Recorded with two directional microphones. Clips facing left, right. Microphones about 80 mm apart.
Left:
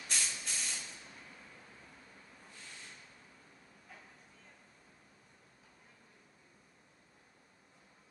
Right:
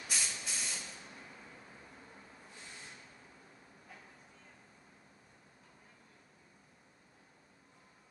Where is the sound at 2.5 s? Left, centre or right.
Right.